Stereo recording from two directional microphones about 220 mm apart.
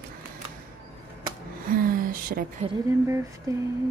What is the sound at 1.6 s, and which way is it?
A woman's voice, 40° right (ahead or behind).